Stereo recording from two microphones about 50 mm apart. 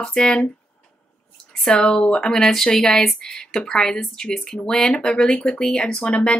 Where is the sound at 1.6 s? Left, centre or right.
Centre.